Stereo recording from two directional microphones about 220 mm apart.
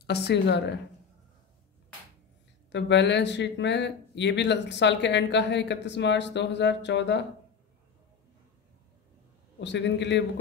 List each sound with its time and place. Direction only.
0.0 s speech: 50° left (ahead or behind)
2.7 s speech: 55° left (ahead or behind)
9.6 s speech: 55° left (ahead or behind)